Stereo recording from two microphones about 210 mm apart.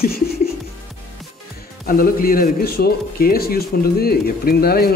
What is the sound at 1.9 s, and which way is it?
A man's voice, 45° left (ahead or behind).